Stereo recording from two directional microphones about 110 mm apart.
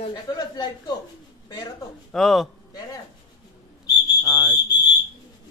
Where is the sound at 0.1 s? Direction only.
40° left (ahead or behind).